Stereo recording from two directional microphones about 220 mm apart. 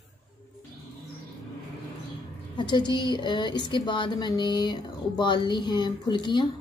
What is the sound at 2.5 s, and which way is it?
A woman's voice, 20° left (ahead or behind).